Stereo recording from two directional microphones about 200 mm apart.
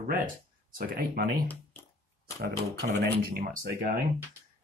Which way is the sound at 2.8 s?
55° right (ahead or behind).